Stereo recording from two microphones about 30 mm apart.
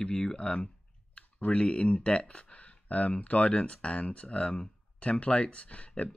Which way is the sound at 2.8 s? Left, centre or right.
Left.